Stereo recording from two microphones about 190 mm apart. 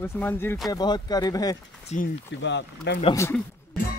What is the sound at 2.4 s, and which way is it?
Speech, 65° left (ahead or behind).